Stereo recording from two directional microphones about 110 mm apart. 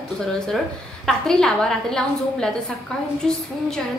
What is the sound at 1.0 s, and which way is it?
A woman's voice, 5° left (ahead or behind).